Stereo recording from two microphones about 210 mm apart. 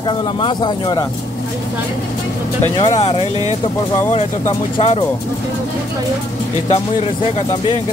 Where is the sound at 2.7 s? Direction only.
15° left (ahead or behind).